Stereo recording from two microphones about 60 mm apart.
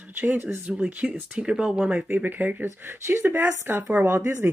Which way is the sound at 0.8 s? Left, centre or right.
Centre.